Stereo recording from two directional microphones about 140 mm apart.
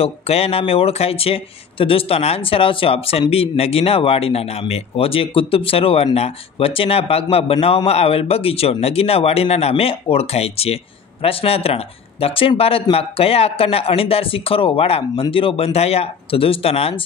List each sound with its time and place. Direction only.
0.0 s speech: 45° left (ahead or behind)